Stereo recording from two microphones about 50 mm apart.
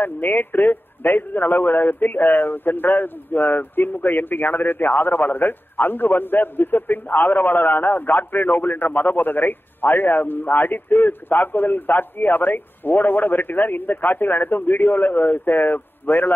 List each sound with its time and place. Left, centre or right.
0.0 s a man's voice: left